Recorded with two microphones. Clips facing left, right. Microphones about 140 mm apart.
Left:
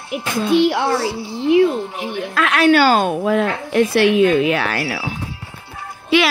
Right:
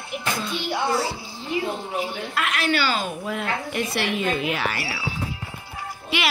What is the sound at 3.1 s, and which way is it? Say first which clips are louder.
A child's voice: left 10 dB; 90° left.